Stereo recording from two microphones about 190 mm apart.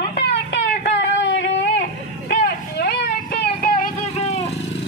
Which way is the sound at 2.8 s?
60° left (ahead or behind).